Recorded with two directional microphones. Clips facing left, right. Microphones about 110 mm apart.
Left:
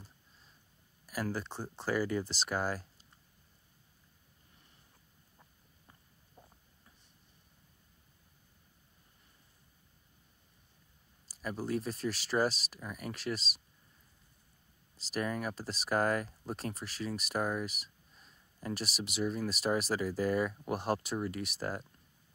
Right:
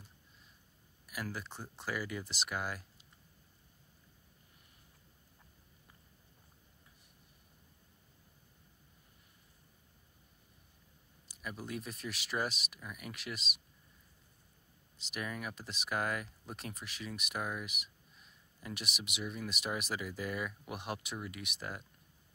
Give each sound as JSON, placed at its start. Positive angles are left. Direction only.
{"t": 1.0, "sound": "speech", "side_deg": 30}
{"t": 11.4, "sound": "speech", "side_deg": 35}
{"t": 15.0, "sound": "speech", "side_deg": 35}
{"t": 17.6, "sound": "a sound", "side_deg": 35}
{"t": 18.6, "sound": "speech", "side_deg": 35}